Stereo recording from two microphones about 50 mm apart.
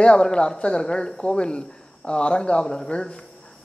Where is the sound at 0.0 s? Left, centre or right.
Centre.